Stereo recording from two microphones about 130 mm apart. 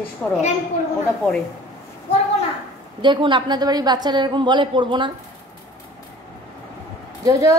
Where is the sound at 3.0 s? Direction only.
35° right (ahead or behind).